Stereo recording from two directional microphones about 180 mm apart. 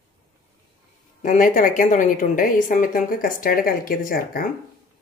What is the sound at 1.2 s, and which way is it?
A woman's voice, 50° left (ahead or behind).